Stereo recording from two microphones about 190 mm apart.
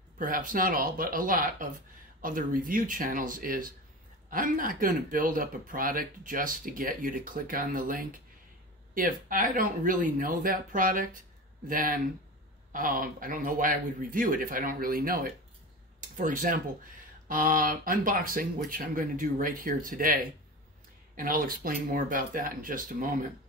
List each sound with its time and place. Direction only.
0.2 s speech: 45° right (ahead or behind)